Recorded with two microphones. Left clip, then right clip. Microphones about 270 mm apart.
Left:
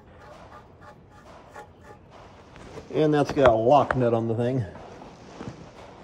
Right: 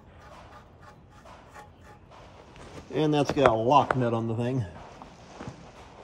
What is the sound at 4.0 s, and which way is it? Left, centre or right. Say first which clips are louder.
Speech: left 5 dB; centre.